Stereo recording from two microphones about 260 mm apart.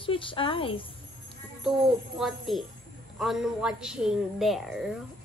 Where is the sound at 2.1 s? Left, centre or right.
Centre.